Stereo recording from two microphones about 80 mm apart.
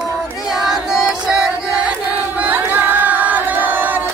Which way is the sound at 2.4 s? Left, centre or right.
Centre.